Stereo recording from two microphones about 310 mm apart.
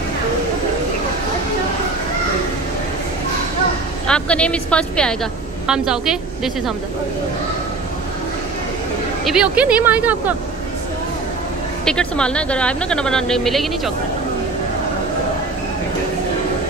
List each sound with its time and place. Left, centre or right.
4.1 s a woman's voice: centre
9.2 s a woman's voice: centre
11.8 s a woman's voice: centre